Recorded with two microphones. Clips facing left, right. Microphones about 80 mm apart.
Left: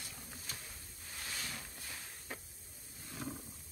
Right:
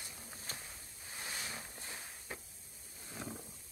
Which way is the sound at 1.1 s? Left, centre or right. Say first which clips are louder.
Right 1 dB; right.